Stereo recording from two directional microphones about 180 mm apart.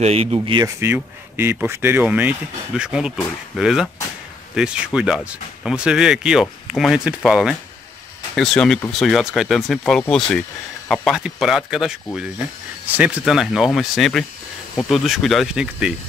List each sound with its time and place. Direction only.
0.0 s speech: 35° right (ahead or behind)
0.7 s speech: 15° right (ahead or behind)